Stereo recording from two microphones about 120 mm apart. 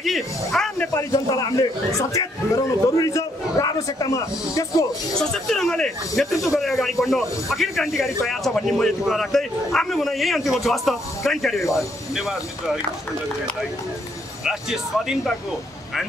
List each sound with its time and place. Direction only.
0.0 s a sound: centre (ahead or behind)
0.9 s a man's voice: 30° left (ahead or behind)
5.2 s speech: 5° left (ahead or behind)
14.4 s speech: 5° right (ahead or behind)